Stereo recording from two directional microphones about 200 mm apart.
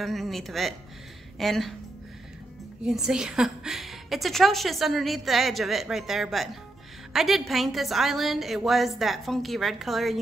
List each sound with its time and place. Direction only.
0.0 s a woman's voice: centre (ahead or behind)
2.8 s a woman's voice: 5° right (ahead or behind)